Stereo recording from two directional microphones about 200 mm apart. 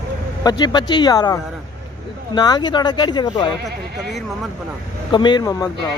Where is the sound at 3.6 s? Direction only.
55° right (ahead or behind).